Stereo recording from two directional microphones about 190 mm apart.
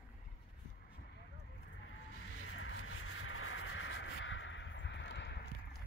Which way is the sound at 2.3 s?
90° left.